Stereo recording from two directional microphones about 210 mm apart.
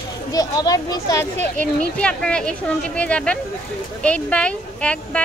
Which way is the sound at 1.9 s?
5° left (ahead or behind).